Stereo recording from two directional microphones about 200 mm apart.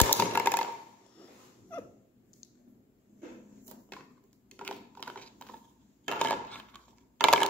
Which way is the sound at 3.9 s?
5° left (ahead or behind).